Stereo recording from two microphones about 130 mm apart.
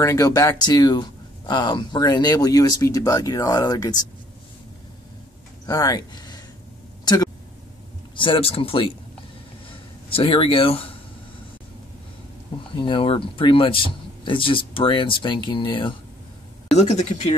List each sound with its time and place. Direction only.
0.0 s speech: 25° left (ahead or behind)
5.7 s speech: 30° left (ahead or behind)
8.2 s speech: 45° left (ahead or behind)
12.7 s speech: 40° left (ahead or behind)
16.7 s speech: 65° left (ahead or behind)